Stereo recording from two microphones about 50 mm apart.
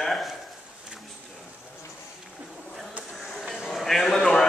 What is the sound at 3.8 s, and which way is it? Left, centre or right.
Speech, centre.